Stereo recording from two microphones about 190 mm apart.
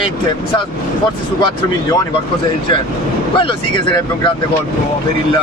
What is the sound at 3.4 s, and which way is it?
Speech, 25° left (ahead or behind).